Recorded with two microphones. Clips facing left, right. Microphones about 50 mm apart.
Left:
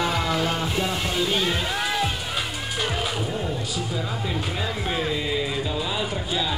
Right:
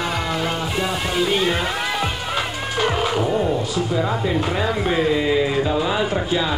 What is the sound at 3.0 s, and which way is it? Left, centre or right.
Music, right.